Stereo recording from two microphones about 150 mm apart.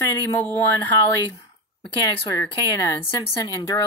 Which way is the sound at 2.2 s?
20° left (ahead or behind).